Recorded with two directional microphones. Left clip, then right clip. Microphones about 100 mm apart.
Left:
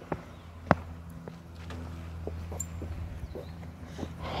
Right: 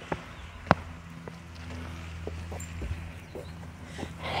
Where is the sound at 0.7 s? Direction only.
50° right (ahead or behind).